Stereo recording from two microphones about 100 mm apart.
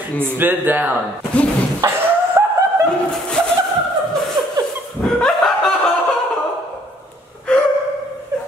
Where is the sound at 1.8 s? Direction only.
40° right (ahead or behind).